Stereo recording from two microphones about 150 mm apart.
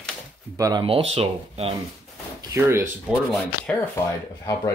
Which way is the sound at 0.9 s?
40° right (ahead or behind).